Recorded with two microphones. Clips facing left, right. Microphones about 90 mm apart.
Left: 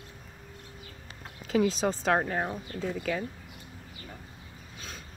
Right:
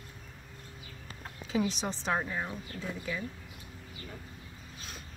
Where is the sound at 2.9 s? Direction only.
65° left (ahead or behind).